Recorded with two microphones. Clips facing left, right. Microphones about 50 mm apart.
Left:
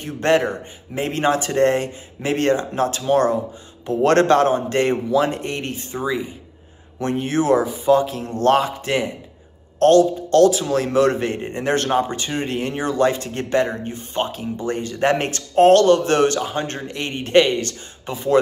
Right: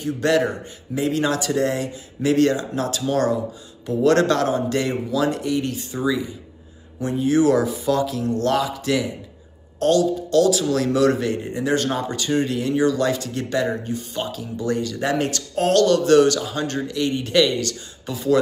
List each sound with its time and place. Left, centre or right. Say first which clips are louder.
0.0 s speech: left 1 dB; left
7.0 s speech: right 2 dB; left
7.6 s a man's voice: left 4 dB; left
10.5 s speech: left 1 dB; left